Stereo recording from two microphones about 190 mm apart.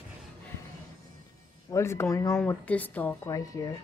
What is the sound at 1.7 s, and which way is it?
Speech, 15° left (ahead or behind).